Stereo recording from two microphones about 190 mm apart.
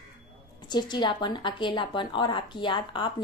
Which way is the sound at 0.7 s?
25° left (ahead or behind).